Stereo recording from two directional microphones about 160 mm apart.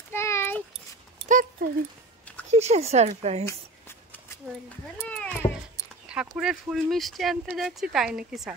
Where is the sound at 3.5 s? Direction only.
15° left (ahead or behind).